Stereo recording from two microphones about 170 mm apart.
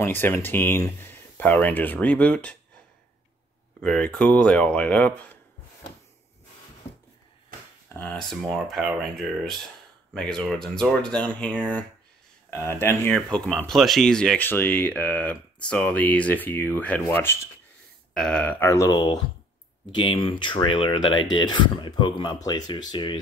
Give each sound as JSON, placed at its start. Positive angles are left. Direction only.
{"t": 0.0, "sound": "speech", "side_deg": 10}
{"t": 3.8, "sound": "speech", "side_deg": 5}
{"t": 8.0, "sound": "speech", "side_deg": 5}
{"t": 18.1, "sound": "speech", "side_deg": 5}